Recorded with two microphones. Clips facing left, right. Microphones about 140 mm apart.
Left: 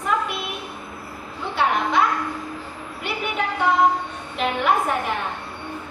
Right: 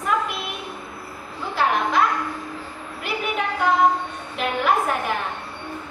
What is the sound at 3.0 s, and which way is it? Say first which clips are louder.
A woman's voice: even; centre (ahead or behind).